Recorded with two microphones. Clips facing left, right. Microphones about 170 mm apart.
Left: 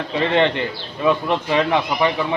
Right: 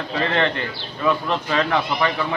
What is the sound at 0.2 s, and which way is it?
Speech, 20° left (ahead or behind).